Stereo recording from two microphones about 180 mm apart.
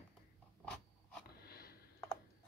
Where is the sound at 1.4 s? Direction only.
60° left (ahead or behind).